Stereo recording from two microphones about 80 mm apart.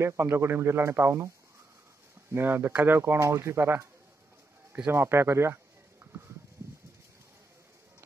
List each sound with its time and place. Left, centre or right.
0.1 s speech: right
2.3 s speech: right
3.0 s speech: right
4.9 s speech: right